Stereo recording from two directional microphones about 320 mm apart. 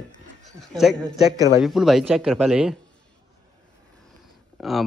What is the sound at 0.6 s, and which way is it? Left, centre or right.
Speech, centre.